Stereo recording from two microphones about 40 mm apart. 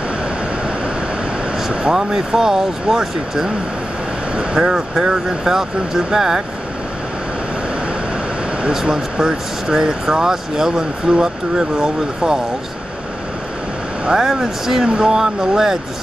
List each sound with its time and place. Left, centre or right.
1.7 s speech: right
8.8 s speech: centre
14.1 s speech: centre